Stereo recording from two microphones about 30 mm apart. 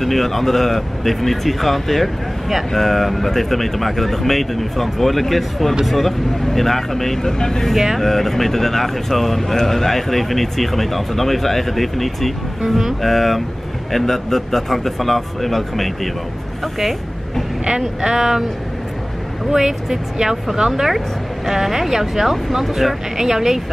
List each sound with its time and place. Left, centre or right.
0.0 s speech: centre
7.3 s speech: left
8.0 s speech: centre
17.6 s speech: centre
19.5 s speech: centre